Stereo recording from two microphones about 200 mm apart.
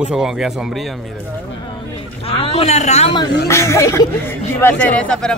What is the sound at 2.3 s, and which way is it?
Speech, 30° left (ahead or behind).